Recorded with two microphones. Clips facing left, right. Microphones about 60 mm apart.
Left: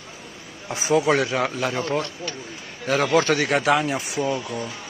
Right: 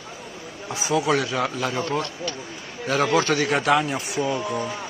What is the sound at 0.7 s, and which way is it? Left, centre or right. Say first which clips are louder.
Speech: left 2 dB; left.